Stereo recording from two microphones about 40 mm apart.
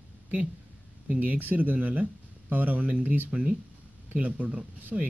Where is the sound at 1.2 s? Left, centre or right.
Right.